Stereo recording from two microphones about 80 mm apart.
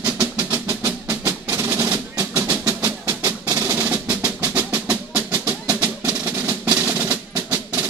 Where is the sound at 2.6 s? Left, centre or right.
Right.